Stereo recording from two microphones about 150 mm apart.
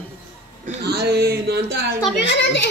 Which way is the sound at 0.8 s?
90° right.